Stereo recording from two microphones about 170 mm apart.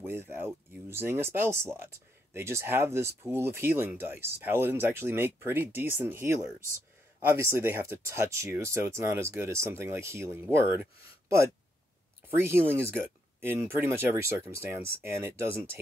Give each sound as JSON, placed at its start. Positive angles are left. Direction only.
{"t": 0.0, "sound": "speech", "side_deg": -15}
{"t": 12.4, "sound": "speech", "side_deg": -15}